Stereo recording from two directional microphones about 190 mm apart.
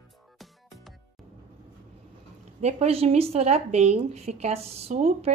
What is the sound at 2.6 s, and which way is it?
A woman's voice, 35° right (ahead or behind).